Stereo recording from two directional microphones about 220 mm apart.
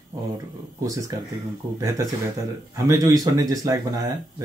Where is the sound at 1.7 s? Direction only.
15° right (ahead or behind).